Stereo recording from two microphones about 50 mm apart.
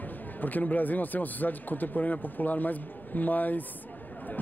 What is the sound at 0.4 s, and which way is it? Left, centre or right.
A man's voice, left.